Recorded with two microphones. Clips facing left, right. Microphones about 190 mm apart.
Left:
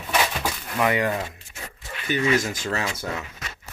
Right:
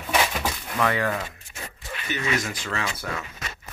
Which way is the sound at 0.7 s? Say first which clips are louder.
Left 2 dB; 15° left (ahead or behind).